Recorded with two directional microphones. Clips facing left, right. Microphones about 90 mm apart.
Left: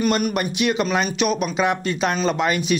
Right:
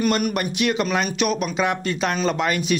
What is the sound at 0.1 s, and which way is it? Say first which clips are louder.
A man's voice: left 1 dB; 20° left (ahead or behind).